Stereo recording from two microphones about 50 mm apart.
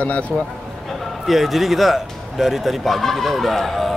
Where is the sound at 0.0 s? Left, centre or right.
Left.